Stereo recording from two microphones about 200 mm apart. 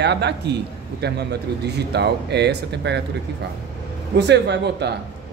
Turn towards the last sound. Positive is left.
turn(degrees=-60)  # may be behind; listen again after turning